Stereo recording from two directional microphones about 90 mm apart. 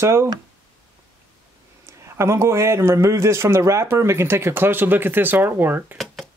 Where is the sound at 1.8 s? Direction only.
30° right (ahead or behind).